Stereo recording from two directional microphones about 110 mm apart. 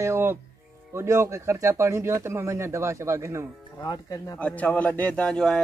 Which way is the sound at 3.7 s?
35° left (ahead or behind).